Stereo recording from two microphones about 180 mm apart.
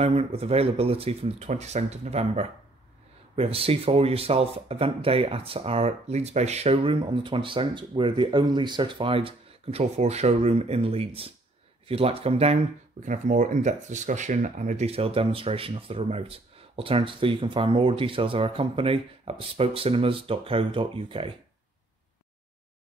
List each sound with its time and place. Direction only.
0.0 s speech: 35° right (ahead or behind)